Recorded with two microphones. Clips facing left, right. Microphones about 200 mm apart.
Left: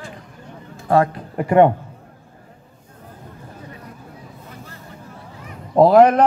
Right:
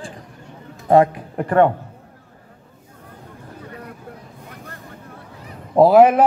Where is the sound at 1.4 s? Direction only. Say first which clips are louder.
Left 2 dB; 15° left (ahead or behind).